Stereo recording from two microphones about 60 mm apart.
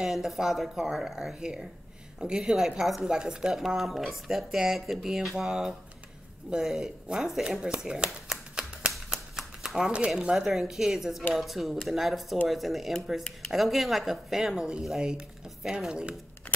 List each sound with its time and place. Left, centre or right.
0.0 s speech: centre
7.1 s speech: centre
7.5 s shuffling cards: centre
9.9 s speech: centre
16.5 s keys jangling: left